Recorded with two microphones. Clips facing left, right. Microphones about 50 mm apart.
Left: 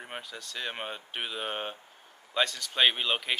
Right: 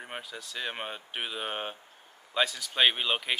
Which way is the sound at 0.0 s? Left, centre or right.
Centre.